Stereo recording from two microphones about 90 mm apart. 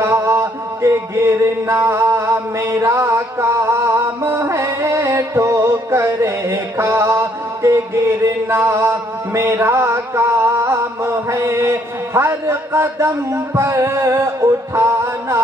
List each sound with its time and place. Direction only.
0.0 s music: 30° right (ahead or behind)
1.9 s mantra: 30° right (ahead or behind)